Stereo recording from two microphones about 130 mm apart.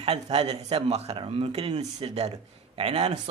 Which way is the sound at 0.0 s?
55° right (ahead or behind).